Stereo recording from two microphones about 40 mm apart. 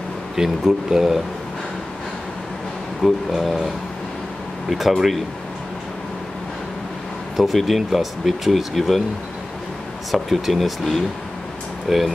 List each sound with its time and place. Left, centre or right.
0.4 s speech: centre
3.0 s speech: centre
7.3 s speech: centre
10.1 s speech: centre